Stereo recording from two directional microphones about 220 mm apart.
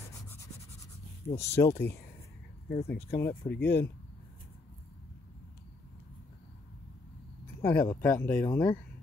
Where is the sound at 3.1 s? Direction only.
10° left (ahead or behind).